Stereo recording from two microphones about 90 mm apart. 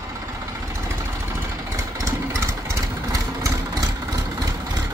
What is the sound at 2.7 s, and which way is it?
Vehicle, 35° right (ahead or behind).